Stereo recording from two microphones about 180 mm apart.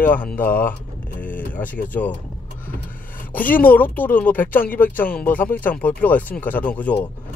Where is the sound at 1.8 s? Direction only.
10° left (ahead or behind).